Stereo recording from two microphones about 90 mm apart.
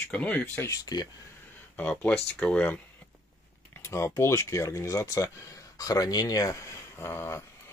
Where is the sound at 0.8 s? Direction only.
45° left (ahead or behind).